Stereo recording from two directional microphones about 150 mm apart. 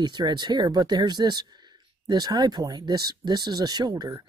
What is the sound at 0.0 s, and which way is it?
Speech, 30° right (ahead or behind).